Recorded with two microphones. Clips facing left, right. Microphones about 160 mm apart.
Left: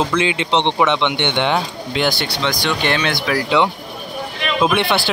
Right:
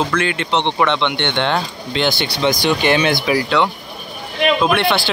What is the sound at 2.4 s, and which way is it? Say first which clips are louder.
Speech: right 5 dB; 10° right (ahead or behind).